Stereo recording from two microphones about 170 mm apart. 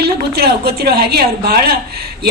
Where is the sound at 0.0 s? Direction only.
70° right (ahead or behind).